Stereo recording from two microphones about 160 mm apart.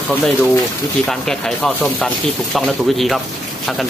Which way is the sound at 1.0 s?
5° left (ahead or behind).